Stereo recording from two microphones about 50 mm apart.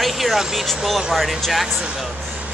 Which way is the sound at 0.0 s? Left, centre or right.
Centre.